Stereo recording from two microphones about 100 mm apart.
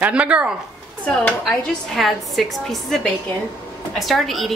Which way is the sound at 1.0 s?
10° left (ahead or behind).